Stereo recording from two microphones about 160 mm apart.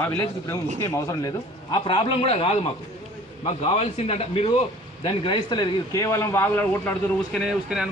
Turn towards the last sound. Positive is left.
turn(degrees=0)  # may be behind; listen again after turning